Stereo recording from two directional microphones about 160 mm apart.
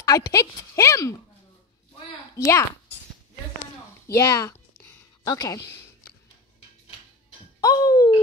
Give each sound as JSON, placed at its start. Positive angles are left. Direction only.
{"t": 0.3, "sound": "speech", "side_deg": 20}
{"t": 2.3, "sound": "speech", "side_deg": 20}
{"t": 4.1, "sound": "speech", "side_deg": 20}
{"t": 7.6, "sound": "a sound", "side_deg": 20}